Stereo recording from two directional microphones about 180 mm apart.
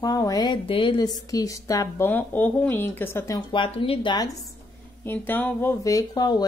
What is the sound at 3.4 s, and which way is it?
Speech, 30° left (ahead or behind).